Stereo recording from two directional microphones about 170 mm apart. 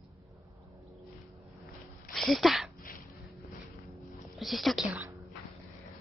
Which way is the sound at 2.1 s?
Centre (ahead or behind).